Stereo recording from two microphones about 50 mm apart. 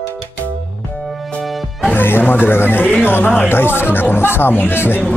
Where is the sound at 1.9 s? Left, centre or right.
Left.